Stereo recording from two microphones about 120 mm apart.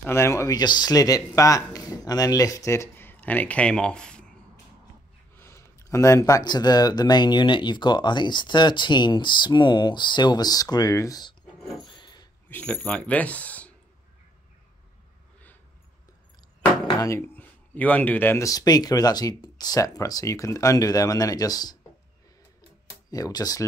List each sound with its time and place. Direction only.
0.0 s speech: 20° left (ahead or behind)
5.3 s speech: 20° left (ahead or behind)
11.8 s filing: 40° left (ahead or behind)
12.4 s speech: 15° left (ahead or behind)
17.4 s speech: 15° left (ahead or behind); by 21.7 s 35° left (ahead or behind)
23.0 s speech: 30° left (ahead or behind)